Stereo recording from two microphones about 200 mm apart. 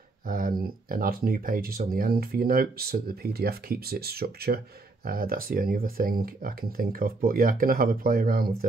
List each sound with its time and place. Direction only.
0.3 s speech: 45° right (ahead or behind)